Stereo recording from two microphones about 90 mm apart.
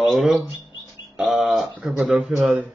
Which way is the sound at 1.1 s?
5° right (ahead or behind).